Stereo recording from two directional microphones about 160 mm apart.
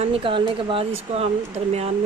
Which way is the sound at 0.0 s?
35° right (ahead or behind).